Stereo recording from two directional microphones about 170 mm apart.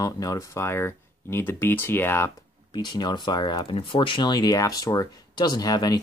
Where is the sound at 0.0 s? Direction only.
20° left (ahead or behind).